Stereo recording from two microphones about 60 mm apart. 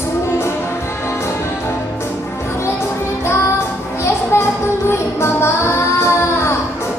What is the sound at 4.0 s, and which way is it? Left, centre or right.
Music, left.